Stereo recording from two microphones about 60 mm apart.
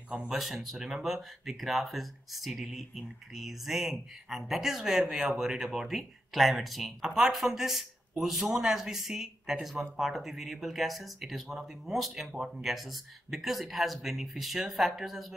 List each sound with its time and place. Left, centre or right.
0.3 s speech: centre
5.0 s speech: centre
5.3 s speech: centre